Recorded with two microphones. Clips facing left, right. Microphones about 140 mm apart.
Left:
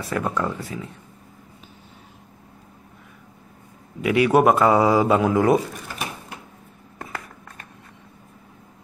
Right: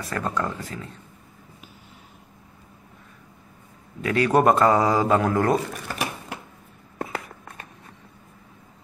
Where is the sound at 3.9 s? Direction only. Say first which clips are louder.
Left 3 dB; 10° left (ahead or behind).